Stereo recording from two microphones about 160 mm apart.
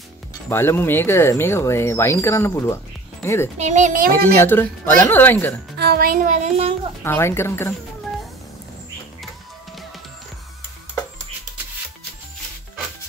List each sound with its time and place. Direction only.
0.5 s speech: 15° left (ahead or behind)
3.5 s a child's voice: 45° right (ahead or behind)
4.1 s speech: 15° left (ahead or behind)
5.8 s speech: 75° right (ahead or behind); by 6.7 s 45° right (ahead or behind)
7.0 s speech: 15° left (ahead or behind)